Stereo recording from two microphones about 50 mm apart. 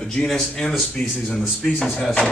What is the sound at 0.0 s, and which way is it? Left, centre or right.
Speech, centre.